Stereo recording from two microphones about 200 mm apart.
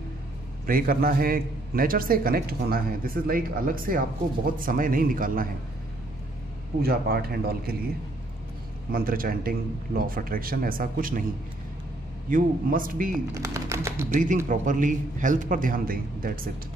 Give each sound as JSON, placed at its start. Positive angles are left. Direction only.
{"t": 0.7, "sound": "a man's voice", "side_deg": -45}
{"t": 6.8, "sound": "a man's voice", "side_deg": -50}
{"t": 8.9, "sound": "a man's voice", "side_deg": -45}
{"t": 12.3, "sound": "a man's voice", "side_deg": -45}
{"t": 13.3, "sound": "speech", "side_deg": -15}
{"t": 14.1, "sound": "a man's voice", "side_deg": -40}